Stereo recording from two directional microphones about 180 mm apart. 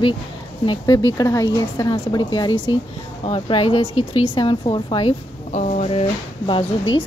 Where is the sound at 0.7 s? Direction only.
20° left (ahead or behind).